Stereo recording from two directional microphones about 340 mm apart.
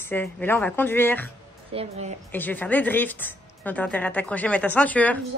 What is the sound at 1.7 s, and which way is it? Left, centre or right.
Speech, centre.